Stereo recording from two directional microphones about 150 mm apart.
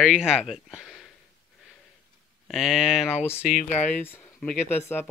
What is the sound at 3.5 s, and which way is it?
Speech, 60° left (ahead or behind).